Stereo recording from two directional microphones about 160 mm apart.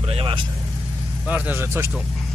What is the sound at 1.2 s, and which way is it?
Speech, 10° right (ahead or behind).